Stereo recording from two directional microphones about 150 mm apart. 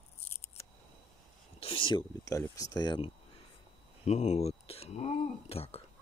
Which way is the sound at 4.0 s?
45° left (ahead or behind).